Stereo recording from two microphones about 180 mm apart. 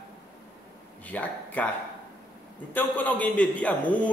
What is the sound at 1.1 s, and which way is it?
Speech, 10° left (ahead or behind).